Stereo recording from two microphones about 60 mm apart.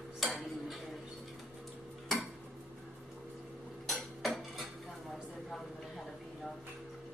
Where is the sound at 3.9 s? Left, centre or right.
Centre.